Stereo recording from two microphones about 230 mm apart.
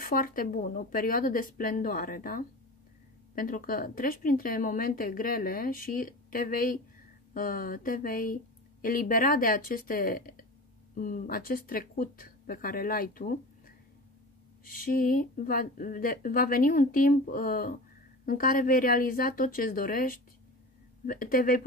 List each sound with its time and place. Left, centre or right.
0.0 s a woman's voice: left
14.9 s a woman's voice: left